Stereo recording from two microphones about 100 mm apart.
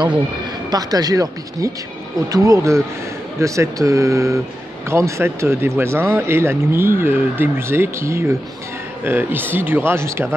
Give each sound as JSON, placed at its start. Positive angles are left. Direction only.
{"t": 0.7, "sound": "speech", "side_deg": -40}